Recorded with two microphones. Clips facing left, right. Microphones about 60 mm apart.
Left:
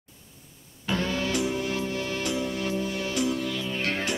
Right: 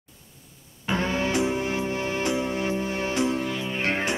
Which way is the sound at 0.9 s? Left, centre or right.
Right.